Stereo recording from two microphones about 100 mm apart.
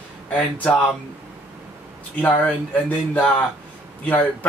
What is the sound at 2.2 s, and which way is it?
Speech, 15° left (ahead or behind).